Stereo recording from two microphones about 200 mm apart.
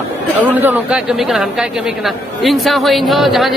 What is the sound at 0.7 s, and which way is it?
Speech, 5° right (ahead or behind).